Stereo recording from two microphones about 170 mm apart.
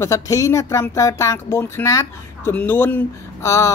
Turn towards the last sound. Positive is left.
turn(degrees=15)  # may be behind; listen again after turning